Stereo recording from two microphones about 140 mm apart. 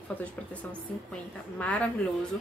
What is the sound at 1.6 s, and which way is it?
Speech, 10° left (ahead or behind).